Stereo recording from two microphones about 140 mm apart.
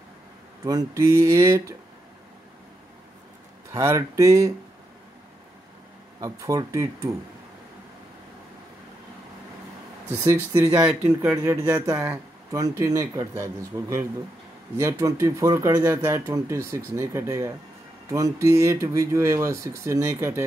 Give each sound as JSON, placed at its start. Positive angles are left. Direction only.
{"t": 0.7, "sound": "speech", "side_deg": -25}
{"t": 3.7, "sound": "speech", "side_deg": -20}
{"t": 6.2, "sound": "speech", "side_deg": -25}
{"t": 10.2, "sound": "speech", "side_deg": -20}